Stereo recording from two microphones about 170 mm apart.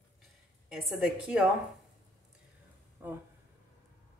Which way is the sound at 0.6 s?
5° right (ahead or behind).